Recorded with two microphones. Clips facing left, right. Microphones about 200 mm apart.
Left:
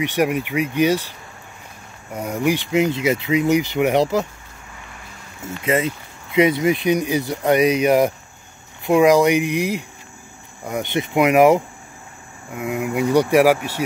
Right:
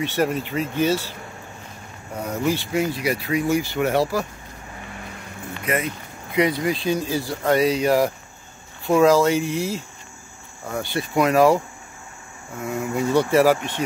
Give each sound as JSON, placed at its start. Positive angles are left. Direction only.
{"t": 0.0, "sound": "speech", "side_deg": 15}
{"t": 2.1, "sound": "speech", "side_deg": 10}
{"t": 5.6, "sound": "speech", "side_deg": 25}